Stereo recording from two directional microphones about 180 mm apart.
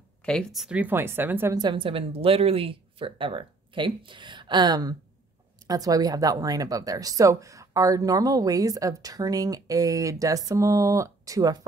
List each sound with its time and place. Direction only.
0.2 s a woman's voice: 5° left (ahead or behind); by 11.5 s 20° right (ahead or behind)